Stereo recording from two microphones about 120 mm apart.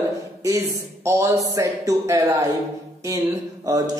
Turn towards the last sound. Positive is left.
turn(degrees=-30)  # may be behind; listen again after turning